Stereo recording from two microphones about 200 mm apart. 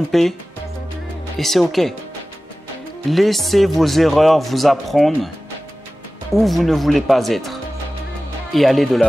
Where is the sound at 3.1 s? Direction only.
Centre (ahead or behind).